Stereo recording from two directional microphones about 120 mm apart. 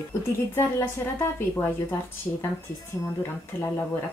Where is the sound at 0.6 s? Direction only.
25° left (ahead or behind).